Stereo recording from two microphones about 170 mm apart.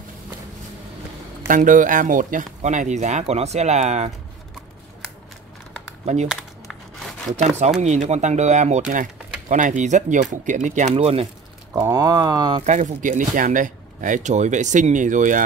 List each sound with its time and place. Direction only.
1.5 s speech: 50° right (ahead or behind)
7.3 s speech: 40° right (ahead or behind)
11.7 s speech: 20° right (ahead or behind)
12.6 s speech: 45° right (ahead or behind)